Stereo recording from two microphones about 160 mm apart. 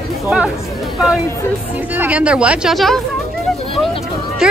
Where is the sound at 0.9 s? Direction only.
Centre (ahead or behind).